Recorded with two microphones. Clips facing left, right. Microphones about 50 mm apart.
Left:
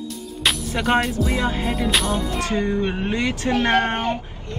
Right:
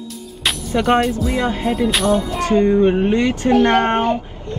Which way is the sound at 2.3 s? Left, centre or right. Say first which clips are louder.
Right 7 dB; right.